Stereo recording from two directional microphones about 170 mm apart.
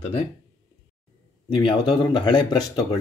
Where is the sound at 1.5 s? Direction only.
30° left (ahead or behind).